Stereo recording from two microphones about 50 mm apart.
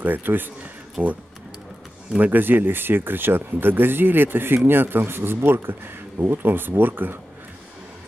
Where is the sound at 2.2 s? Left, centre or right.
Right.